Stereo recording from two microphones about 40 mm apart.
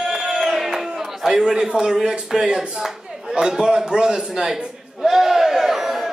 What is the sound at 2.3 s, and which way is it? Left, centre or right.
Speech, centre.